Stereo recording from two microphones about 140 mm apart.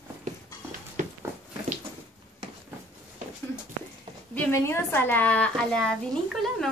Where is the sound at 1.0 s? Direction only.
60° right (ahead or behind).